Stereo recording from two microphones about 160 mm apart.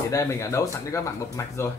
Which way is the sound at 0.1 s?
20° left (ahead or behind).